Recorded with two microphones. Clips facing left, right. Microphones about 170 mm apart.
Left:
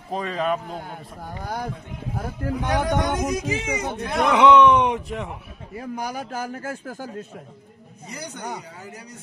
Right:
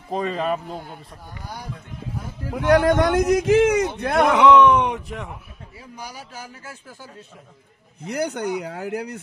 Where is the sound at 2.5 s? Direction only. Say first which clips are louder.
Right 7 dB; 70° right (ahead or behind).